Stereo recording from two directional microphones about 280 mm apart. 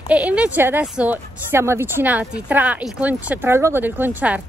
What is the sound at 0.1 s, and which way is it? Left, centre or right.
Speech, centre.